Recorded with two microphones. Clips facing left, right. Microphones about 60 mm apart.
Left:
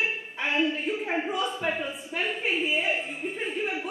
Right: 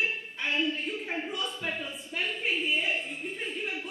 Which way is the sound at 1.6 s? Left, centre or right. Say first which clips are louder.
Left 6 dB; centre.